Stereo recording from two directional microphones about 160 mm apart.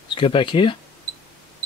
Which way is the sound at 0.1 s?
30° left (ahead or behind).